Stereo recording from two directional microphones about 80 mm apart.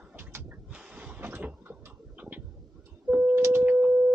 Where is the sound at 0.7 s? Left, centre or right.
Centre.